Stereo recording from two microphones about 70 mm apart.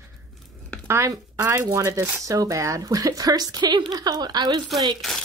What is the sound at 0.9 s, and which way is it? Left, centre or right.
A woman's voice, right.